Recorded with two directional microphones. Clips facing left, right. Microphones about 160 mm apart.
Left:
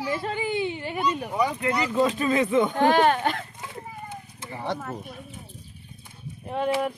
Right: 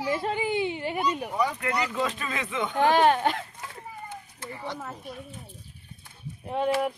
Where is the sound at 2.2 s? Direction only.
35° left (ahead or behind).